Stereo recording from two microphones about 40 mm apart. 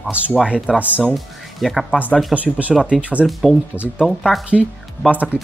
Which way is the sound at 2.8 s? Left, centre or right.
Right.